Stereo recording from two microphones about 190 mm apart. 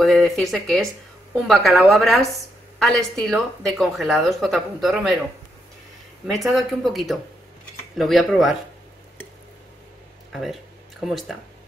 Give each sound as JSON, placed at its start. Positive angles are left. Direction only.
{"t": 0.0, "sound": "speech", "side_deg": 0}
{"t": 6.2, "sound": "speech", "side_deg": 0}
{"t": 10.3, "sound": "speech", "side_deg": 0}